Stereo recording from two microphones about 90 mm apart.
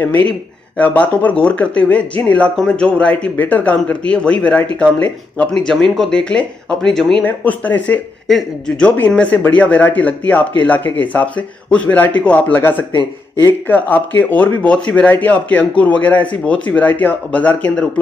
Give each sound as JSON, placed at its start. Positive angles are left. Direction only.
{"t": 0.7, "sound": "speech", "side_deg": 15}
{"t": 7.2, "sound": "speech", "side_deg": 20}
{"t": 8.3, "sound": "speech", "side_deg": 5}